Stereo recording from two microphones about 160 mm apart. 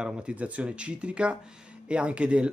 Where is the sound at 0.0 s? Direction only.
5° right (ahead or behind).